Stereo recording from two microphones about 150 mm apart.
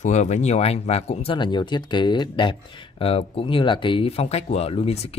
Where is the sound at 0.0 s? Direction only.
50° left (ahead or behind).